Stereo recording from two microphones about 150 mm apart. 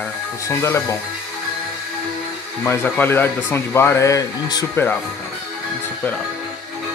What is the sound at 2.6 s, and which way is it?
Speech, 15° left (ahead or behind).